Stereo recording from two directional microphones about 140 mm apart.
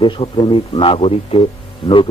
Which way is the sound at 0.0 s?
35° left (ahead or behind).